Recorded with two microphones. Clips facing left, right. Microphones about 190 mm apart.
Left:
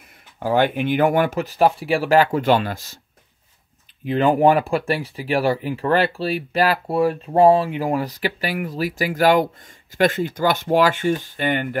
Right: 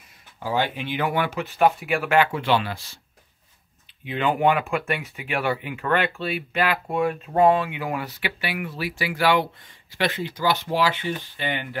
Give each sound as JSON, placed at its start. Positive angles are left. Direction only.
{"t": 0.4, "sound": "speech", "side_deg": 55}
{"t": 4.0, "sound": "speech", "side_deg": 40}